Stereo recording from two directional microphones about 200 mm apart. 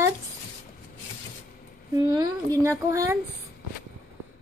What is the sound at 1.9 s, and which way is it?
A woman's voice, 20° right (ahead or behind).